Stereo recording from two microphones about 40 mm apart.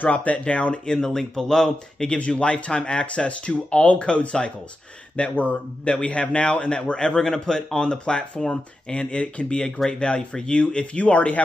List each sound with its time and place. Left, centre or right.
0.0 s speech: left
0.9 s speech: centre
2.1 s speech: left